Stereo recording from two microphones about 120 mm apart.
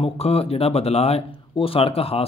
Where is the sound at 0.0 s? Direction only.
55° left (ahead or behind).